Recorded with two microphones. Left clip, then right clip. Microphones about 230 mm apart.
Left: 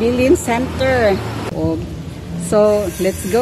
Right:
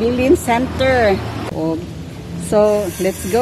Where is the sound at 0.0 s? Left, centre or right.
Centre.